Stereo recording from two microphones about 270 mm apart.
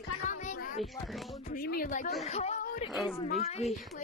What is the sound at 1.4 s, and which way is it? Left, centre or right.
A woman's voice, left.